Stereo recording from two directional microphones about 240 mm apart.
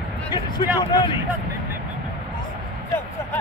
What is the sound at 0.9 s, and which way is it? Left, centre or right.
Speech, centre.